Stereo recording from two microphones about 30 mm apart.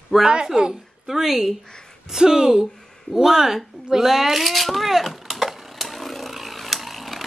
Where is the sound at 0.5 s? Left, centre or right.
Right.